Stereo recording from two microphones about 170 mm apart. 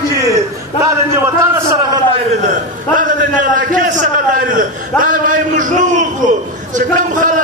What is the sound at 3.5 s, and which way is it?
A man's voice, 50° right (ahead or behind).